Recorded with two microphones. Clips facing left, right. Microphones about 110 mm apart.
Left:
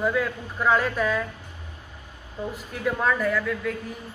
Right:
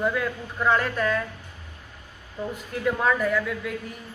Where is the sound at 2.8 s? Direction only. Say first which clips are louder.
Even; centre (ahead or behind).